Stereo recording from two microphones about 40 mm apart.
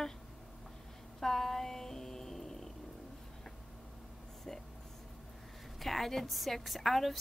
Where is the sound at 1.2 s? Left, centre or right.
Centre.